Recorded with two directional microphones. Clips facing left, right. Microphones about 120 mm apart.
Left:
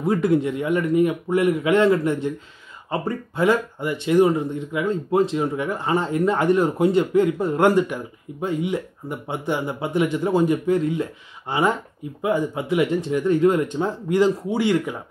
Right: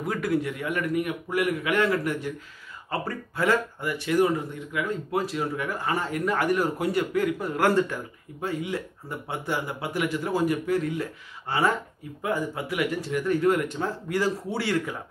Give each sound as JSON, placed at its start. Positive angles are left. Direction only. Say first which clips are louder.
{"t": 0.0, "sound": "speech", "louder": "left 7 dB", "side_deg": 25}